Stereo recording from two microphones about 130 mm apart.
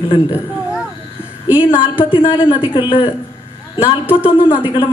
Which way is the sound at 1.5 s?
10° right (ahead or behind).